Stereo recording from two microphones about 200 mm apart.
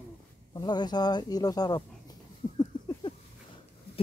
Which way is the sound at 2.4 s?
20° left (ahead or behind).